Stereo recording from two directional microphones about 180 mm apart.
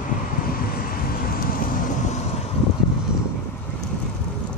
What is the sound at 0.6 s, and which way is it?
Vehicle, 55° left (ahead or behind).